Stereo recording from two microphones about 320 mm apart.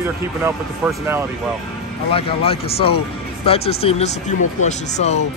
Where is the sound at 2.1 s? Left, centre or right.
Centre.